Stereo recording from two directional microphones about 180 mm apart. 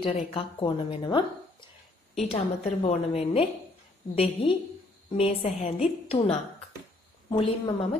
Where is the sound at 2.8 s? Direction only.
35° left (ahead or behind).